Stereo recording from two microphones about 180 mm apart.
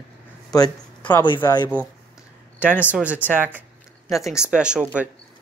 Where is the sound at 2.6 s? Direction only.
10° right (ahead or behind).